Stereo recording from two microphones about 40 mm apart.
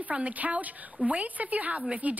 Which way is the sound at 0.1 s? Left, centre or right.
Right.